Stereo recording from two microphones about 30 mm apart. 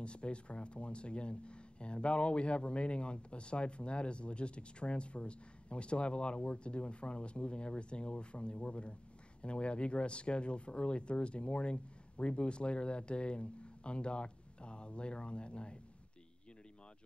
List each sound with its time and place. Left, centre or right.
0.0 s speech: left